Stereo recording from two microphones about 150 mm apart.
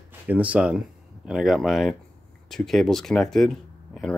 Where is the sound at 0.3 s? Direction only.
10° right (ahead or behind).